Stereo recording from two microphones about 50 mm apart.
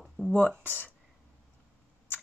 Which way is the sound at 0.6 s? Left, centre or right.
Left.